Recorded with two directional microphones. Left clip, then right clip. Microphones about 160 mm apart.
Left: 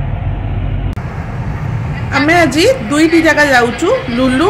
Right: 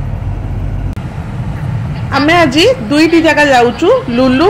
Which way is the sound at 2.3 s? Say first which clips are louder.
Right 2 dB; 10° right (ahead or behind).